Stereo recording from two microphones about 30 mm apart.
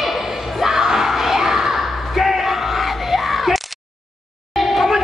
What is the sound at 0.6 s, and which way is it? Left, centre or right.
Crowd, centre.